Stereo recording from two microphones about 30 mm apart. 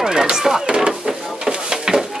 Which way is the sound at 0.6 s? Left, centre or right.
Right.